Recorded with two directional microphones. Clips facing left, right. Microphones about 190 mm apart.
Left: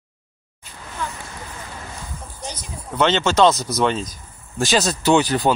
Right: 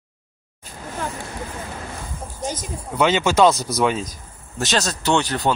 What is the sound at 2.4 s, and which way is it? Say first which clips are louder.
Speech: right 7 dB; 45° right (ahead or behind).